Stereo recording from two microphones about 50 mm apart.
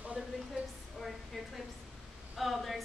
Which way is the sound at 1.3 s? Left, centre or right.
Centre.